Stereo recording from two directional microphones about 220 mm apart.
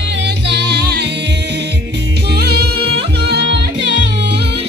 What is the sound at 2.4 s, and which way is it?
Music, 45° right (ahead or behind).